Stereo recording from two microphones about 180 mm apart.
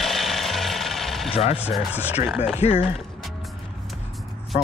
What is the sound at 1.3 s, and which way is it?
Speech, 35° left (ahead or behind).